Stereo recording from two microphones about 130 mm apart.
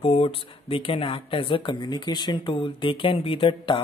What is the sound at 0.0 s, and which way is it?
Speech, 45° left (ahead or behind).